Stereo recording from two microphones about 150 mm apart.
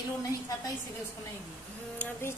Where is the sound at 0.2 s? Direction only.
20° left (ahead or behind).